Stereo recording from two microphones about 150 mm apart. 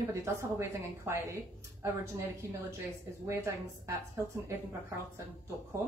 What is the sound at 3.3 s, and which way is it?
A woman's voice, 20° right (ahead or behind).